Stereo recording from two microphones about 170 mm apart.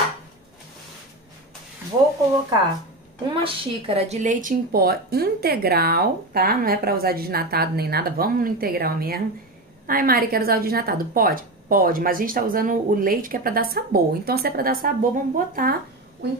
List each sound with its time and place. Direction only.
3.3 s speech: 30° right (ahead or behind); by 15.7 s 55° right (ahead or behind)